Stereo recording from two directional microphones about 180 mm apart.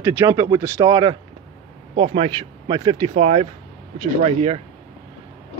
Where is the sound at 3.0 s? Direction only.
35° right (ahead or behind).